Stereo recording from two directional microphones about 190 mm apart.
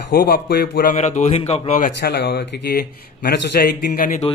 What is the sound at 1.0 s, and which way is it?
Speech, 40° left (ahead or behind).